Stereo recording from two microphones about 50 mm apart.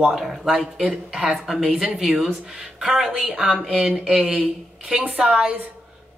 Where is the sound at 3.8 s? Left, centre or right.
Right.